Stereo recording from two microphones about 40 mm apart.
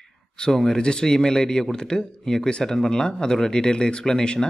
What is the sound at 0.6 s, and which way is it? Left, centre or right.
Speech, centre.